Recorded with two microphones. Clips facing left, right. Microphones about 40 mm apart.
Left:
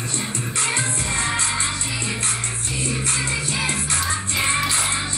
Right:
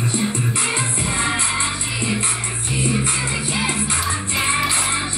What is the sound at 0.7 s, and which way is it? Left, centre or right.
Music, right.